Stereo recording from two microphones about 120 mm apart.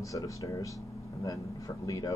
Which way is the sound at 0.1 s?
30° left (ahead or behind).